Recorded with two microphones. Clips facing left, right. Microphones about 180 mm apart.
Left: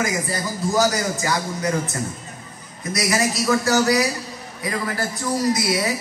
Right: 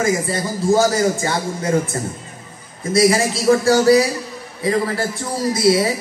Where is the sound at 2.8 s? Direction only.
30° right (ahead or behind).